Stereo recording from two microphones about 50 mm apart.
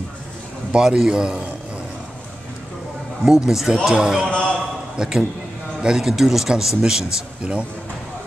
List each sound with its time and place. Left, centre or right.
0.7 s a man's voice: centre
3.3 s a man's voice: centre
3.9 s a man's voice: centre
4.3 s a sound: left
4.9 s a man's voice: centre